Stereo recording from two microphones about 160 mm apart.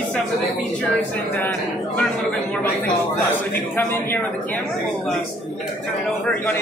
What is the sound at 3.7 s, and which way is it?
Speech, 15° left (ahead or behind).